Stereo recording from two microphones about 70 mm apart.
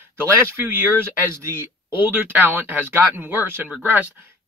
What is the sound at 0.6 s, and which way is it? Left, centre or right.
Speech, right.